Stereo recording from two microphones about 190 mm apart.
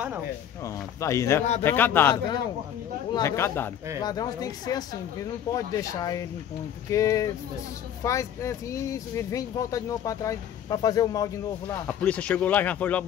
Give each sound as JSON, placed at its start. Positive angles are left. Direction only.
{"t": 0.7, "sound": "speech", "side_deg": 15}
{"t": 11.6, "sound": "speech", "side_deg": 5}